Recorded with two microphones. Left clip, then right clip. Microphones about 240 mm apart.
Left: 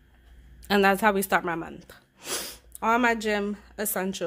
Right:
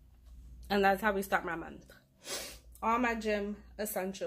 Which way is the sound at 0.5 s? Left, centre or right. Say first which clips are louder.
Left 7 dB; left.